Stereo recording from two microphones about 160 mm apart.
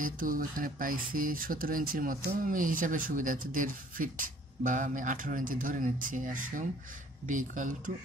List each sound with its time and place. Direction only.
0.0 s speech: 60° right (ahead or behind)